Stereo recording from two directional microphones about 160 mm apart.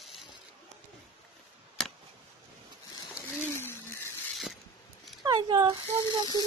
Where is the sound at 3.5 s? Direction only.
15° left (ahead or behind).